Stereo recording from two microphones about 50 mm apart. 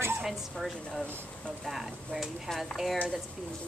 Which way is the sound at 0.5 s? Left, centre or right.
Centre.